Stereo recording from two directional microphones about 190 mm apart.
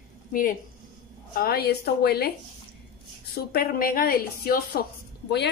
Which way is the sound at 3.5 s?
50° left (ahead or behind).